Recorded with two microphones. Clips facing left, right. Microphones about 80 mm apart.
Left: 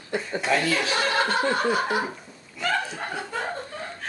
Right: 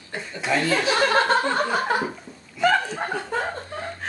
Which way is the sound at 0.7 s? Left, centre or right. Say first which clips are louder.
Right 4 dB; right.